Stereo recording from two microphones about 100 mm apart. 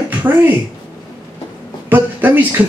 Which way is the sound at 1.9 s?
20° right (ahead or behind).